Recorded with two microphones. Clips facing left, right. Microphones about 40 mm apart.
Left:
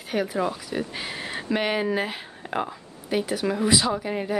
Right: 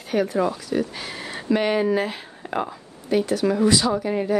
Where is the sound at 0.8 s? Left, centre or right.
Centre.